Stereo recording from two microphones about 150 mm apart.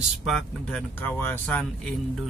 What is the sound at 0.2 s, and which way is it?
Speech, centre (ahead or behind).